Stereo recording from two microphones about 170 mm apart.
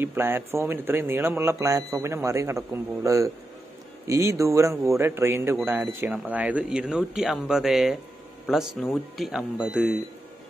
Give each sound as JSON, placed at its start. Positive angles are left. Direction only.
{"t": 0.0, "sound": "speech", "side_deg": -15}